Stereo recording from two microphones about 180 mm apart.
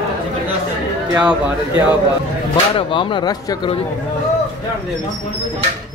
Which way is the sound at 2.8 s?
30° left (ahead or behind).